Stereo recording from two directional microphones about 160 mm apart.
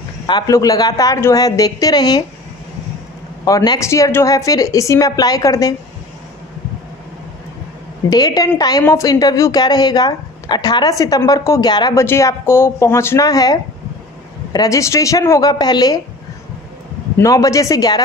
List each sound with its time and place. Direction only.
0.3 s a woman's voice: 25° left (ahead or behind)
3.4 s a woman's voice: 25° left (ahead or behind)
8.1 s a woman's voice: 25° left (ahead or behind)
17.2 s a woman's voice: 20° left (ahead or behind)